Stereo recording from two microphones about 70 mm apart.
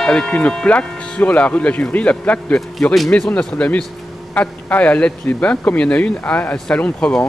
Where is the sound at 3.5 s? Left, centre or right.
Left.